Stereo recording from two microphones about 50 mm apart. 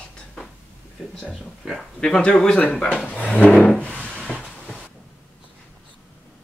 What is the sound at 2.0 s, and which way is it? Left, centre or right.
Speech, centre.